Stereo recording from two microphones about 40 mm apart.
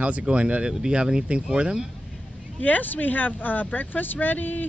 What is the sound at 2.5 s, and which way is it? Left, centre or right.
Speech, left.